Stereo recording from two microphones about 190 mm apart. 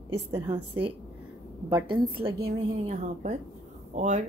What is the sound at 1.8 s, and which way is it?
A woman's voice, 25° right (ahead or behind).